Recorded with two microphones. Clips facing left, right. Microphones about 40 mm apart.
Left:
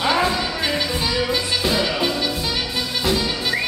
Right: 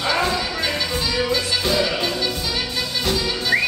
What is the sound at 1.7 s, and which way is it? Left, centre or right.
Music, centre.